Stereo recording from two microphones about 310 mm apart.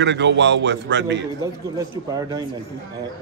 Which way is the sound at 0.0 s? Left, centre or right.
Right.